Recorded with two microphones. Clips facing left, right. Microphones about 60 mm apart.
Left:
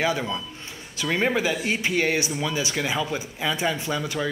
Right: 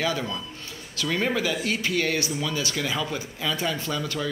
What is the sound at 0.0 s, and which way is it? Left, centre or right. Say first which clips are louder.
Speech: left 2 dB; centre.